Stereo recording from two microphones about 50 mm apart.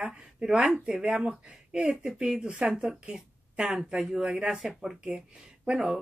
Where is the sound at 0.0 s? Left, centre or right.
Centre.